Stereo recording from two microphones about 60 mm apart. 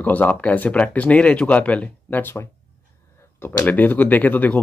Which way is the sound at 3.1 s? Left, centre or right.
Left.